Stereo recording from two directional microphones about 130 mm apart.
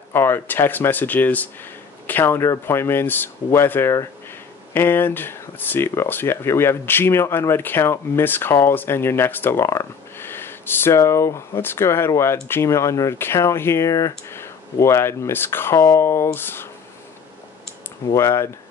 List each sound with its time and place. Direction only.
0.1 s speech: 15° left (ahead or behind)
18.1 s speech: 20° left (ahead or behind)